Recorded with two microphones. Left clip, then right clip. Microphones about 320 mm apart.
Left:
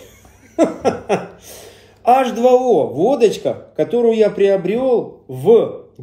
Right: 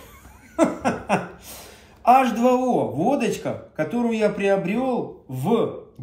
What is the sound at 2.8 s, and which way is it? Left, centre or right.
Speech, centre.